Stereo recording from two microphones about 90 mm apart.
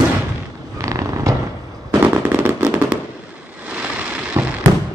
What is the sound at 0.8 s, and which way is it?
Purr, 40° right (ahead or behind).